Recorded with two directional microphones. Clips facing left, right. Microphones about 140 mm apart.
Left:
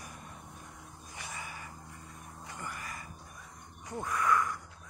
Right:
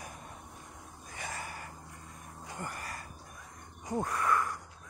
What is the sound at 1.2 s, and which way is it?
Gasp, 50° right (ahead or behind).